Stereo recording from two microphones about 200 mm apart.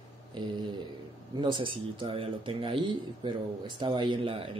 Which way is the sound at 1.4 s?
25° right (ahead or behind).